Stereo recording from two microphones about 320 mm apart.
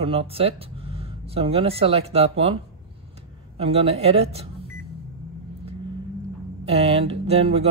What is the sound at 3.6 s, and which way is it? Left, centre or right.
Speech, centre.